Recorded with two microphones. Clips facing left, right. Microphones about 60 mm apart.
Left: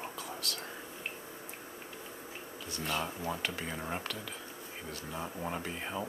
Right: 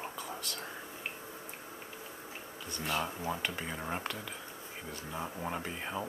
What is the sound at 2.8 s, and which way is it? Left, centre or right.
Speech, centre.